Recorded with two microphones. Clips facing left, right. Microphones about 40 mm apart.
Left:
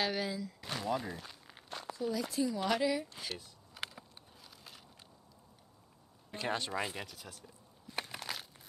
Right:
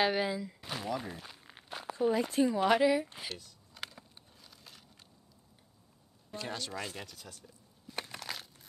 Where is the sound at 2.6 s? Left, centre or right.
Right.